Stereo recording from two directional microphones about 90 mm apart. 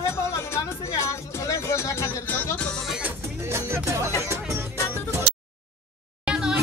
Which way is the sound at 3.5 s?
30° right (ahead or behind).